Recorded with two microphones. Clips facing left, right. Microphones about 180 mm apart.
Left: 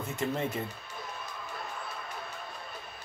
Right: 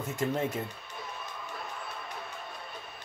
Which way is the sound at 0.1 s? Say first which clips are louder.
Right 2 dB; 45° right (ahead or behind).